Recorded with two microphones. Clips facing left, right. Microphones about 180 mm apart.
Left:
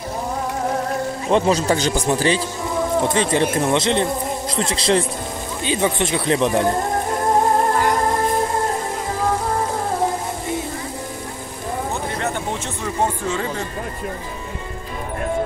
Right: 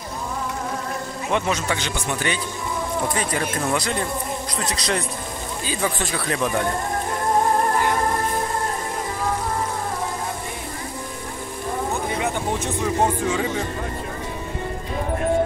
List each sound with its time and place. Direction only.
1.3 s speech: 30° left (ahead or behind)